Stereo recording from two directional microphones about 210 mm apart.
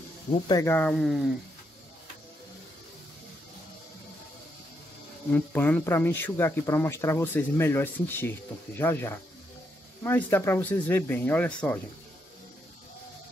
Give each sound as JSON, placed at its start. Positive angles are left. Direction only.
{"t": 0.3, "sound": "speech", "side_deg": 20}
{"t": 5.3, "sound": "speech", "side_deg": 10}